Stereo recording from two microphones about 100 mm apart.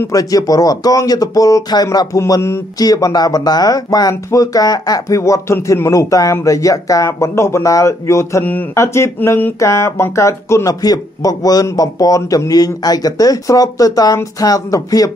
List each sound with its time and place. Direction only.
0.1 s speech: 35° left (ahead or behind)